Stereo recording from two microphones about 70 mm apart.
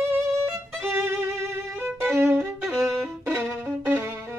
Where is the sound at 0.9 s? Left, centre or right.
Right.